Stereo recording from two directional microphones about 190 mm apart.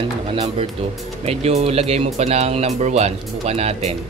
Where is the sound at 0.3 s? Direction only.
30° right (ahead or behind).